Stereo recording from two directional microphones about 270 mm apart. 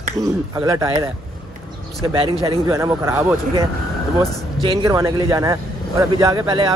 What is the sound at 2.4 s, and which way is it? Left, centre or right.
Speech, centre.